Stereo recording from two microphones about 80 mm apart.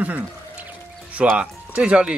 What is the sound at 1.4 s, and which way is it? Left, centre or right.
Speech, centre.